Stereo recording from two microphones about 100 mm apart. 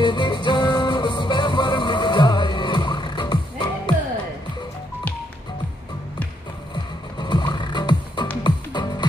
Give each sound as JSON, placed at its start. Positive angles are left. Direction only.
{"t": 0.0, "sound": "music", "side_deg": 50}
{"t": 6.7, "sound": "music", "side_deg": 50}